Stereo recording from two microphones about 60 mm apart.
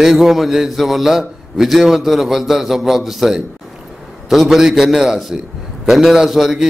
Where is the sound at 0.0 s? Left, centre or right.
Centre.